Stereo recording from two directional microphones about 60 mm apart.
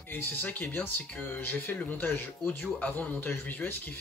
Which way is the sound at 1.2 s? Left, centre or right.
Left.